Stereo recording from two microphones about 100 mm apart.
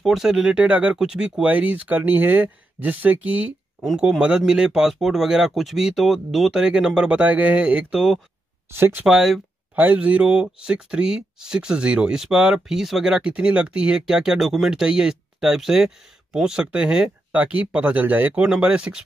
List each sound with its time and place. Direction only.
0.0 s speech: 5° right (ahead or behind)
8.7 s speech: 25° right (ahead or behind)
9.0 s speech: 5° right (ahead or behind)
9.8 s speech: 15° right (ahead or behind)